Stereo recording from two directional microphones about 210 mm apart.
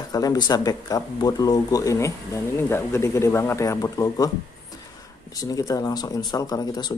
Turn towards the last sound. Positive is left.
turn(degrees=20)  # may be behind; listen again after turning